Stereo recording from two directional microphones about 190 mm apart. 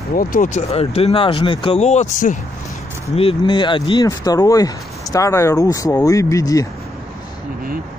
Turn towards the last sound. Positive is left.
turn(degrees=20)  # may be behind; listen again after turning